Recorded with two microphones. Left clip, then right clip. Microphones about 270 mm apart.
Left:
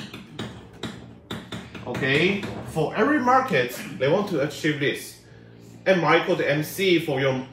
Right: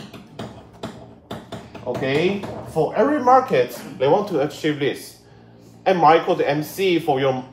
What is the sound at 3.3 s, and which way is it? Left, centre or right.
Speech, centre.